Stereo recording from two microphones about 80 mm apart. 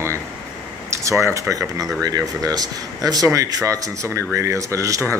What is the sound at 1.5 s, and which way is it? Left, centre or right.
Speech, right.